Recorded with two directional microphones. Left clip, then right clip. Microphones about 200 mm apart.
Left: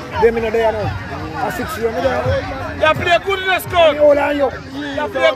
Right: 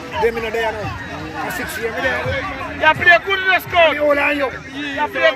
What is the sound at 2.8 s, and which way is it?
Speech, 65° left (ahead or behind).